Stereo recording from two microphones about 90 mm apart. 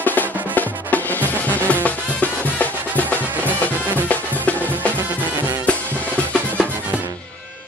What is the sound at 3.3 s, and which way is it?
Music, 20° right (ahead or behind).